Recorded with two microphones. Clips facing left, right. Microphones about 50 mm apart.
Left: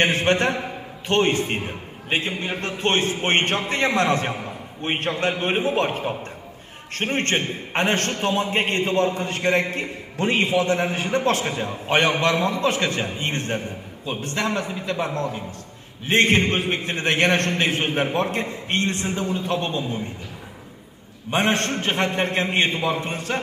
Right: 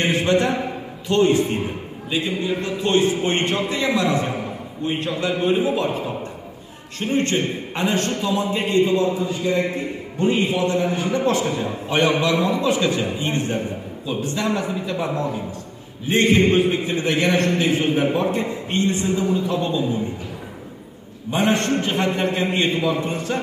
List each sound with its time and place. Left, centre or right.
0.0 s a sound: left
1.0 s a man's voice: left
12.1 s a man's voice: left
15.0 s a man's voice: centre
16.1 s a man's voice: left
21.3 s a man's voice: left